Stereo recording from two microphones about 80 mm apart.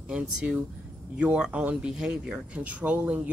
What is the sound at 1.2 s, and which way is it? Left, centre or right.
Speech, centre.